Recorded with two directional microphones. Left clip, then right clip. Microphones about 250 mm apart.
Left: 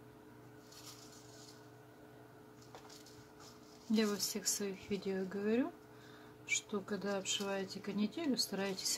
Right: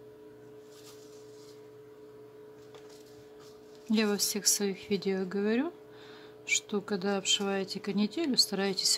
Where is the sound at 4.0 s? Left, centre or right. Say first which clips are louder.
Right 7 dB; right.